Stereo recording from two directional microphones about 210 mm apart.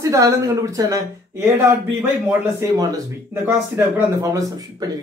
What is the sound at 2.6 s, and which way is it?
Speech, 15° right (ahead or behind).